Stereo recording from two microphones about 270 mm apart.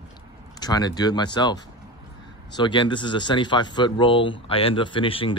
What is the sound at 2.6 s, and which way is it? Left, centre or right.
Speech, centre.